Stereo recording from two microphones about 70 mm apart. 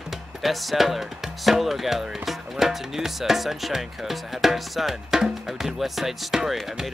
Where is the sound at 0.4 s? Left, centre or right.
Centre.